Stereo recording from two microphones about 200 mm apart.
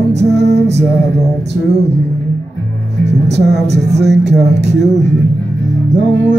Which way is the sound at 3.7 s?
60° right (ahead or behind).